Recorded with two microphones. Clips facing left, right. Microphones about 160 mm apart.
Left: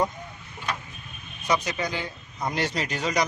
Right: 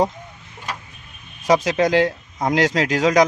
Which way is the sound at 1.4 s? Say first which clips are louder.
Right 9 dB; 90° right.